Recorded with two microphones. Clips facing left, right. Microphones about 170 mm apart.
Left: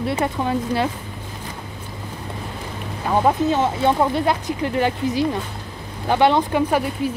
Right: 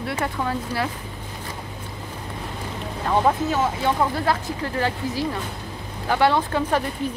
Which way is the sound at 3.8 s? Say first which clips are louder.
Left 5 dB; 25° left (ahead or behind).